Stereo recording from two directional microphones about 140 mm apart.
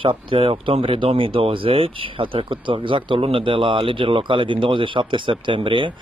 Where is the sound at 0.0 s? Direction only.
40° right (ahead or behind).